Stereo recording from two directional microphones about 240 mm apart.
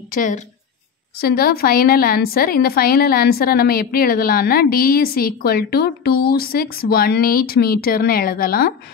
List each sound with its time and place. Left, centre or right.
0.1 s a woman's voice: left